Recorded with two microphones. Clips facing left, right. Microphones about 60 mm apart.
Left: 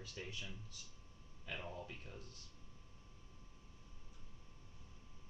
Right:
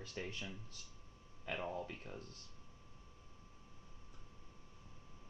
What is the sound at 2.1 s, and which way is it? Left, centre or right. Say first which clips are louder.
Speech: right 4 dB; right.